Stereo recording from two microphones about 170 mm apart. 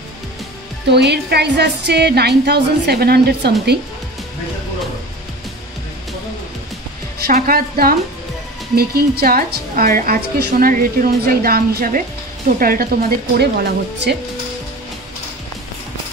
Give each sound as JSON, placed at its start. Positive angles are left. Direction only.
{"t": 0.8, "sound": "a woman's voice", "side_deg": -80}
{"t": 7.2, "sound": "a woman's voice", "side_deg": -60}